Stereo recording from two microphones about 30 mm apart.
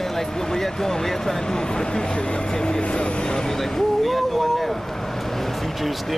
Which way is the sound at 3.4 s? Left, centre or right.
Centre.